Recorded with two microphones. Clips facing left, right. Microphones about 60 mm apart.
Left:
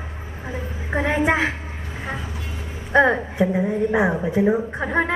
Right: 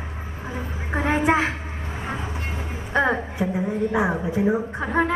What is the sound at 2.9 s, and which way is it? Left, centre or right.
A woman's voice, left.